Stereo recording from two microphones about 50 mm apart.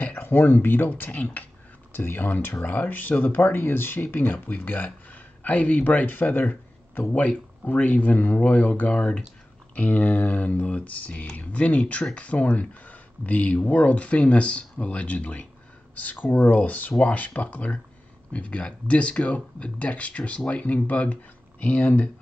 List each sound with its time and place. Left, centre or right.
0.0 s speech: left
1.9 s speech: left